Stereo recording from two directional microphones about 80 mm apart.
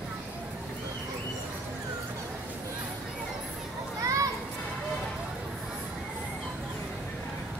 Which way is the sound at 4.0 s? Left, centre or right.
Right.